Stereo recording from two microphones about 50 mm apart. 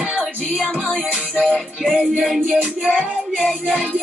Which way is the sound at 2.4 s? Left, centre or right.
Right.